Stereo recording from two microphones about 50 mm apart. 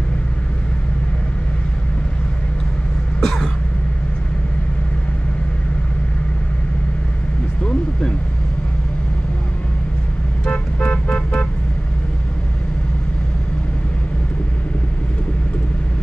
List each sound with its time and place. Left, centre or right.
3.2 s throat clearing: centre
10.4 s vehicle: left